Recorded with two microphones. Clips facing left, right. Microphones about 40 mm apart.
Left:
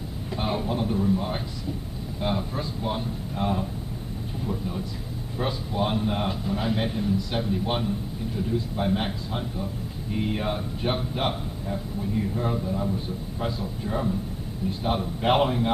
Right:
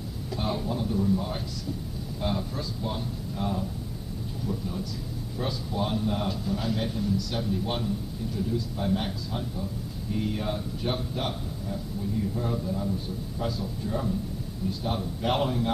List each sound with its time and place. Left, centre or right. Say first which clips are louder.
0.3 s a man's voice: left 3 dB; left